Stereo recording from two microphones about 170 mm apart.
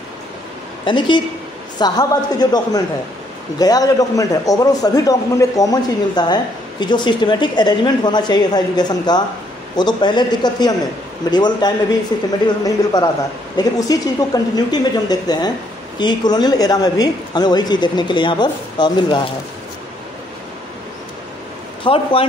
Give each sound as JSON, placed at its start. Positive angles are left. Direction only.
{"t": 0.8, "sound": "a man's voice", "side_deg": 25}
{"t": 21.8, "sound": "speech", "side_deg": 30}